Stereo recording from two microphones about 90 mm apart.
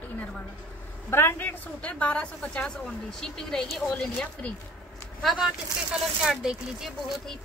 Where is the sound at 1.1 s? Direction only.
25° left (ahead or behind).